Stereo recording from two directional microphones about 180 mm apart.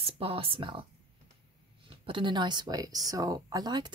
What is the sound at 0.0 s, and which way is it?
Speech, 30° right (ahead or behind).